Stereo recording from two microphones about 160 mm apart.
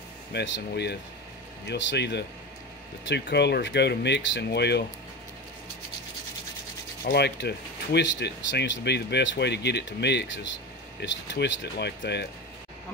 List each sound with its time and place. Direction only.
0.3 s speech: 90° left
7.1 s speech: 90° left